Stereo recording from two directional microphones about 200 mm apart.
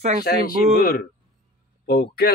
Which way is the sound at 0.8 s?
45° left (ahead or behind).